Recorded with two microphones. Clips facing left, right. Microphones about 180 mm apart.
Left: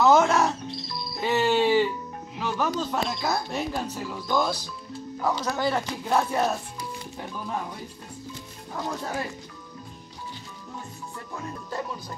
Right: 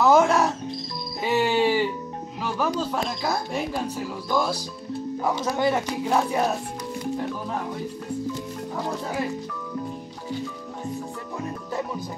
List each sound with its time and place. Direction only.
0.0 s music: 10° right (ahead or behind)
2.8 s speech: 5° right (ahead or behind)
5.2 s speech: 20° right (ahead or behind)
5.8 s speech: 5° right (ahead or behind)